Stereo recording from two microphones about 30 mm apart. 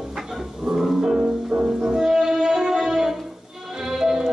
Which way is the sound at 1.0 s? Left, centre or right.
Right.